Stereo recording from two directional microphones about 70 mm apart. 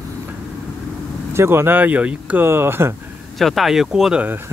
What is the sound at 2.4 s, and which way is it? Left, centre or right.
Speech, right.